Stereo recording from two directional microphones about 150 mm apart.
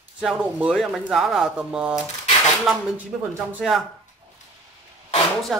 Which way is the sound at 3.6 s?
Centre (ahead or behind).